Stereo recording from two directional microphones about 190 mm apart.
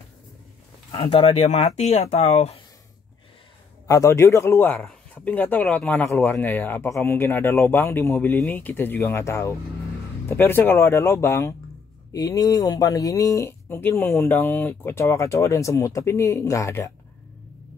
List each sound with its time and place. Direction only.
0.9 s speech: 30° left (ahead or behind)
3.8 s speech: 15° left (ahead or behind)